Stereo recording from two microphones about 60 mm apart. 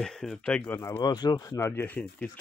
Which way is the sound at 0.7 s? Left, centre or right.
Left.